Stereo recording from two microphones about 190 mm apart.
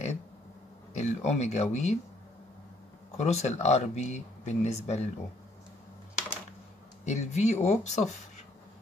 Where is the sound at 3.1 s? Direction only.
35° left (ahead or behind).